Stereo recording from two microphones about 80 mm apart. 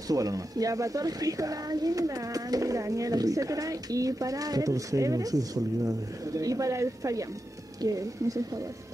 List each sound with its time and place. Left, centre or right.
0.1 s speech: right